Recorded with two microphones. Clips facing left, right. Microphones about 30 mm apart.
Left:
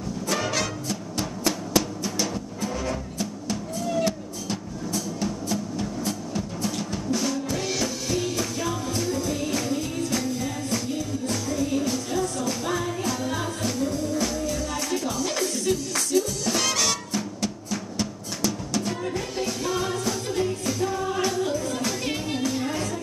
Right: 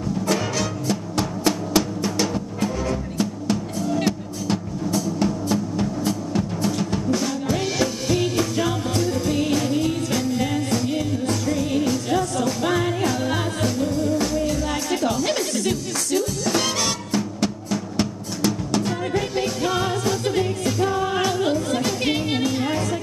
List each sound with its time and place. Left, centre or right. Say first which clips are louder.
0.8 s music: right 6 dB; right
4.5 s music: right 7 dB; right
12.1 s music: right 5 dB; right
12.6 s music: right 7 dB; right
16.2 s music: right 2 dB; right
17.1 s music: right 5 dB; right
22.4 s music: right 4 dB; right